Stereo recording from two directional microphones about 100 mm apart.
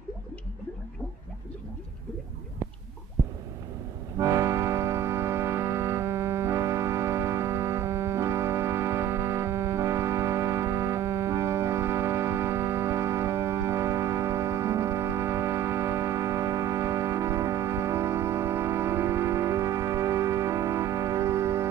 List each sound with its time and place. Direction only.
4.2 s music: 30° right (ahead or behind)